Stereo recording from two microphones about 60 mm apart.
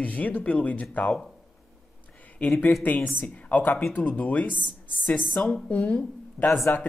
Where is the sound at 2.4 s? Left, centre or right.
Left.